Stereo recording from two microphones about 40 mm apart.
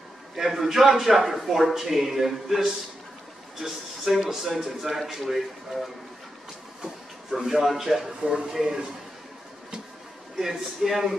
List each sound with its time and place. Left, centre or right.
0.4 s a man's voice: centre
6.8 s a sound: centre
7.4 s a man's voice: centre
8.2 s a man's voice: centre
10.4 s a man's voice: centre